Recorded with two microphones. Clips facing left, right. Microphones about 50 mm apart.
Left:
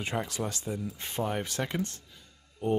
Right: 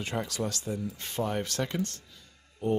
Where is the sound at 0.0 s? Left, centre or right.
Left.